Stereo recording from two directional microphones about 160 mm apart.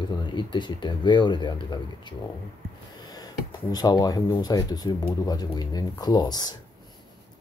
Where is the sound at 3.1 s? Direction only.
25° left (ahead or behind).